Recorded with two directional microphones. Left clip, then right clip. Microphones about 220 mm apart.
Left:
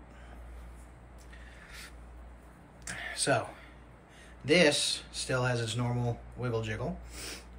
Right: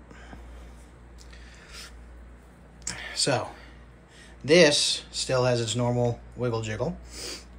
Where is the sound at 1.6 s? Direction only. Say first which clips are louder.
Right 5 dB; 5° right (ahead or behind).